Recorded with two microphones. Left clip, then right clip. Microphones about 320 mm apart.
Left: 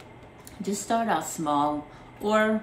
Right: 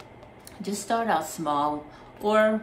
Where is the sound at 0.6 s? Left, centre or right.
Centre.